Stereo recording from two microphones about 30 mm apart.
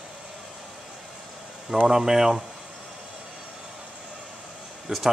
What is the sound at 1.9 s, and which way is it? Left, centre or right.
Speech, centre.